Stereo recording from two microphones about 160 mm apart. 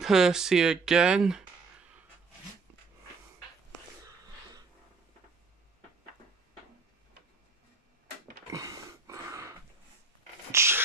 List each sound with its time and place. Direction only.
0.0 s speech: 5° right (ahead or behind)
8.5 s a sound: 20° right (ahead or behind)
10.5 s dog: 15° right (ahead or behind)